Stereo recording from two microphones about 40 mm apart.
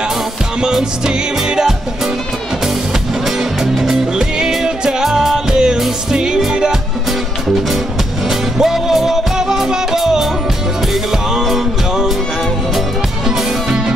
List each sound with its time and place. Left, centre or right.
0.6 s music: centre
3.3 s music: centre
8.3 s music: centre
13.7 s music: centre